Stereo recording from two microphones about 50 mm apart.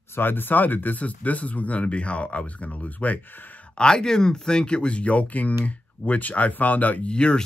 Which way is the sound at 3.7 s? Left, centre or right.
Centre.